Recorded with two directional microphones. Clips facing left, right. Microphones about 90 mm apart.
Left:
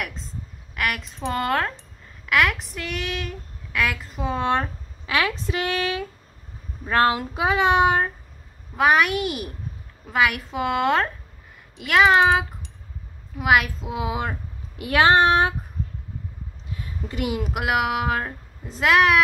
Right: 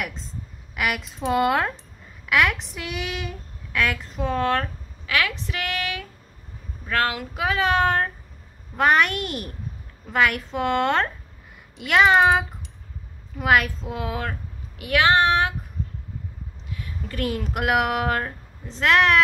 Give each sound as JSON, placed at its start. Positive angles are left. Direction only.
{"t": 0.0, "sound": "a woman's voice", "side_deg": 0}
{"t": 4.4, "sound": "a woman's voice", "side_deg": 20}
{"t": 14.8, "sound": "speech", "side_deg": 30}
{"t": 16.7, "sound": "a sound", "side_deg": 25}
{"t": 17.2, "sound": "a woman's voice", "side_deg": 10}